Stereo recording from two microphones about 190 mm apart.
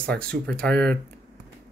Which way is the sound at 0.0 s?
5° left (ahead or behind).